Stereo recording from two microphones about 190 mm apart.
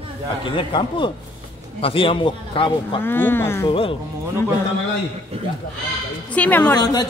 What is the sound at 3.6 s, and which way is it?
Speech, 30° left (ahead or behind).